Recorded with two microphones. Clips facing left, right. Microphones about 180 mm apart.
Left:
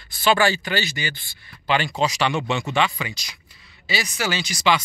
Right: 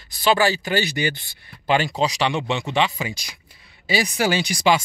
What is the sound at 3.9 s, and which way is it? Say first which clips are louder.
Speech: right 5 dB; 50° right (ahead or behind).